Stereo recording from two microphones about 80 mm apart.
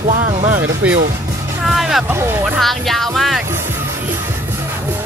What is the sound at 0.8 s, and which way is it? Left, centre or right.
Speech, centre.